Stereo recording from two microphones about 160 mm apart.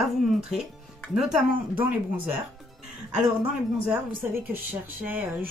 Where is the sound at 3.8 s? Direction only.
10° right (ahead or behind).